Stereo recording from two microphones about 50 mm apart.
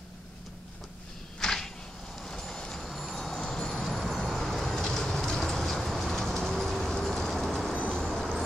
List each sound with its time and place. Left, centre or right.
1.4 s a sound: centre
2.2 s vehicle: centre
7.7 s vehicle: centre
8.1 s music: centre